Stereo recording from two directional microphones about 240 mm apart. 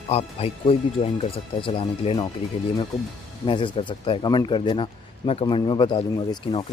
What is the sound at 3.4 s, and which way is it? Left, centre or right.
Speech, left.